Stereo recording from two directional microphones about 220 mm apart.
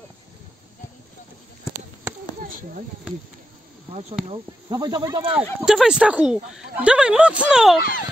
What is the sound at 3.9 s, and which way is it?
Speech, 30° right (ahead or behind).